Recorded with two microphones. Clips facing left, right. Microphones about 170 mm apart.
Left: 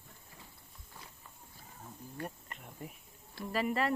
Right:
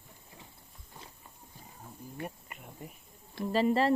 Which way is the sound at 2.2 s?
5° right (ahead or behind).